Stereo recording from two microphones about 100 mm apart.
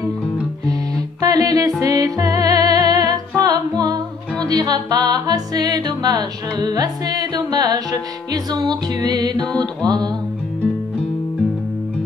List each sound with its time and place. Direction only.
1.2 s music: 35° right (ahead or behind)
9.5 s music: 10° left (ahead or behind)
9.8 s music: 45° right (ahead or behind)